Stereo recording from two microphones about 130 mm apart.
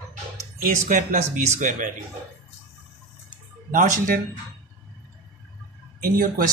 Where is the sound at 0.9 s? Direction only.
75° right (ahead or behind).